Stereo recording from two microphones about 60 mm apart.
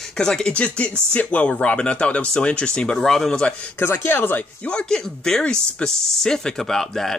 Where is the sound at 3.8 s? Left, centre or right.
Left.